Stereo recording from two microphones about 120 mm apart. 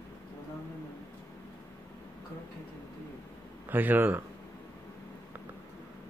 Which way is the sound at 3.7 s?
15° right (ahead or behind).